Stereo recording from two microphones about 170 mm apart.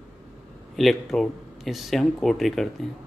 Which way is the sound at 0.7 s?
Centre (ahead or behind).